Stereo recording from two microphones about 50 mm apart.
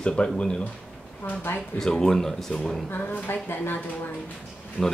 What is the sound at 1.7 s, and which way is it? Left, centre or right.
Speech, centre.